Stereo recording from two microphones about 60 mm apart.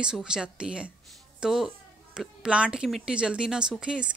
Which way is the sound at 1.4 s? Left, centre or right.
Centre.